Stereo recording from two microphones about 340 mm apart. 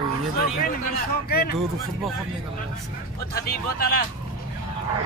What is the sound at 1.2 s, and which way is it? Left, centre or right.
Speech, left.